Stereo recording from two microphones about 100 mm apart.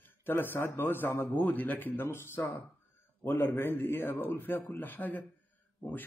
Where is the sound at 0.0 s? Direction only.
20° left (ahead or behind).